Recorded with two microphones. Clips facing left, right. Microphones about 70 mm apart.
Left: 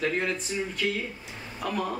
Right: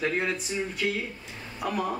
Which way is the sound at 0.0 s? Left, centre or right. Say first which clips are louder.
Even; centre.